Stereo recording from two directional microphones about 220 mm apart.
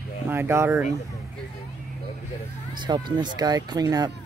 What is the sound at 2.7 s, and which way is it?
Speech, 20° right (ahead or behind).